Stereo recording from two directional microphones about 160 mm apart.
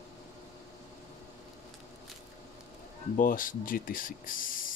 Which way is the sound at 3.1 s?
60° left (ahead or behind).